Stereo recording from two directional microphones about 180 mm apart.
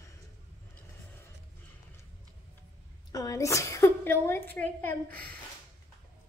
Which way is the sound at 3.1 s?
20° left (ahead or behind).